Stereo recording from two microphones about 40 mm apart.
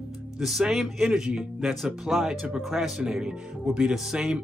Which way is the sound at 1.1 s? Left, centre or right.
Centre.